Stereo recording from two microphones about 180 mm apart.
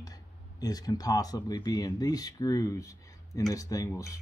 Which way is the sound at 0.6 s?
20° left (ahead or behind).